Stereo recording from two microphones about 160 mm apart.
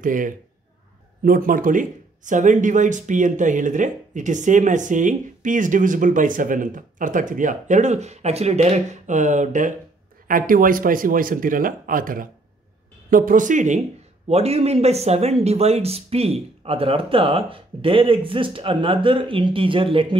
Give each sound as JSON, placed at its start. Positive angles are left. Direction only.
{"t": 0.0, "sound": "speech", "side_deg": -55}
{"t": 14.3, "sound": "speech", "side_deg": -40}